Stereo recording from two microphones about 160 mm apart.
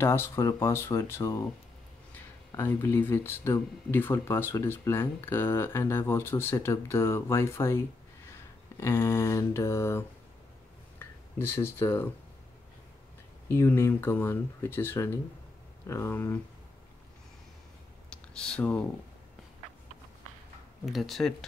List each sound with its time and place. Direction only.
0.0 s speech: 15° left (ahead or behind)
2.5 s speech: 15° left (ahead or behind)
8.3 s mantra: 15° left (ahead or behind)
11.0 s speech: 15° left (ahead or behind)
13.5 s speech: 15° left (ahead or behind)
18.3 s speech: 5° left (ahead or behind)
20.8 s speech: centre (ahead or behind)